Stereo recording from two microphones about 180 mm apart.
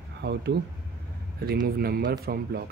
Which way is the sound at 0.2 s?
70° right (ahead or behind).